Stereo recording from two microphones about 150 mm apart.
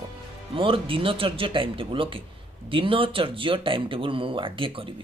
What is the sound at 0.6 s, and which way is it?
A man's voice, 35° right (ahead or behind).